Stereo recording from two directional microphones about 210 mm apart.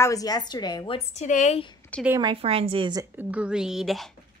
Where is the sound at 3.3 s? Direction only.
5° right (ahead or behind).